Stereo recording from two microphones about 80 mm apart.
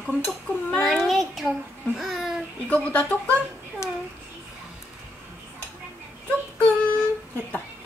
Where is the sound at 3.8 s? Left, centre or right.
Left.